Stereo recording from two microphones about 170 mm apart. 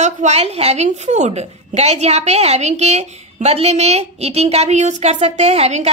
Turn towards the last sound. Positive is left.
turn(degrees=-40)  # may be behind; listen again after turning